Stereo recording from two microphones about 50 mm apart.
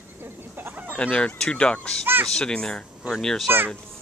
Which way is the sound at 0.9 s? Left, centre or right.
Left.